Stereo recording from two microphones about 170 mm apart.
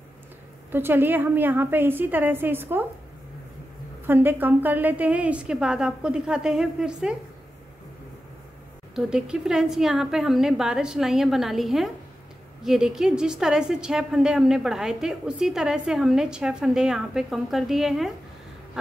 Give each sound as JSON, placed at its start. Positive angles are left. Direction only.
{"t": 0.7, "sound": "a woman's voice", "side_deg": -10}
{"t": 4.1, "sound": "a woman's voice", "side_deg": -10}
{"t": 8.9, "sound": "a woman's voice", "side_deg": -5}